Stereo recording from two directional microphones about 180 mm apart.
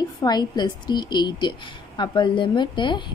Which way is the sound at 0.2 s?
25° left (ahead or behind).